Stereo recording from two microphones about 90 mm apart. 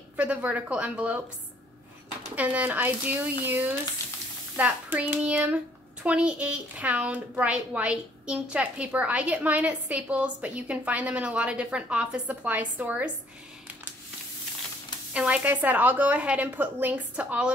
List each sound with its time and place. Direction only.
0.2 s a woman's voice: 15° right (ahead or behind)
2.3 s a woman's voice: 15° right (ahead or behind)
15.1 s a woman's voice: 15° right (ahead or behind)